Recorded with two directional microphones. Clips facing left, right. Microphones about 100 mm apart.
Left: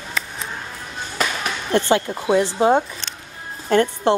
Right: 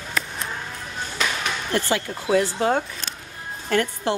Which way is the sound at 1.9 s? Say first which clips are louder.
Left 1 dB; 25° left (ahead or behind).